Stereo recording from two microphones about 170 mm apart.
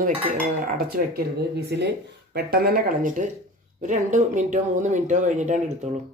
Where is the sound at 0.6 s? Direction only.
60° right (ahead or behind).